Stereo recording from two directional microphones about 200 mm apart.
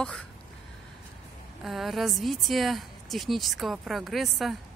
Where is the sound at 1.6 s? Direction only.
Centre (ahead or behind).